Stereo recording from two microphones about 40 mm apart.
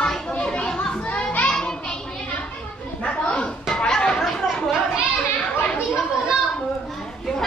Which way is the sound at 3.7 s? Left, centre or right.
Centre.